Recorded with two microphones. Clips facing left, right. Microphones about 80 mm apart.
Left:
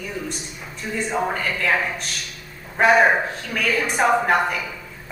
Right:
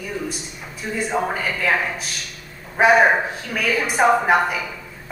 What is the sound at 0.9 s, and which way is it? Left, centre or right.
A man's voice, centre.